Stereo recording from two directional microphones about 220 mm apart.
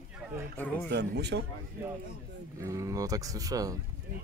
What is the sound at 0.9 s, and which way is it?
Speech, 50° right (ahead or behind).